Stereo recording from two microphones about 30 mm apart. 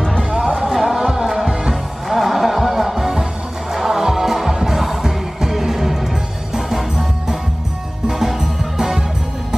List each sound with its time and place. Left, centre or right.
0.7 s music: centre